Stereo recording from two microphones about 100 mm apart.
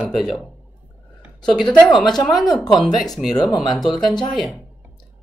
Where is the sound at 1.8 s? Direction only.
50° left (ahead or behind).